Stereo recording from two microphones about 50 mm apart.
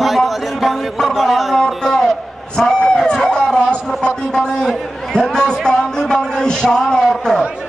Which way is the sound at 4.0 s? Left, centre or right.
Centre.